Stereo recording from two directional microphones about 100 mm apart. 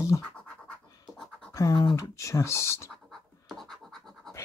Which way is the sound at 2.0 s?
30° left (ahead or behind).